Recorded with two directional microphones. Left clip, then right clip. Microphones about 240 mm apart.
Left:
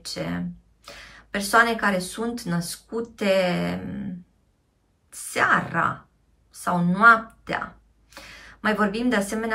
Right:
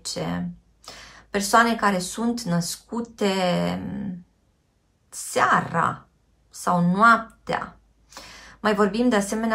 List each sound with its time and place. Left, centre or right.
0.0 s speech: centre
5.1 s a woman's voice: centre